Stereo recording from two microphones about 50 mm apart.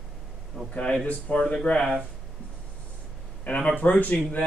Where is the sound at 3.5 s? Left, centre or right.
Left.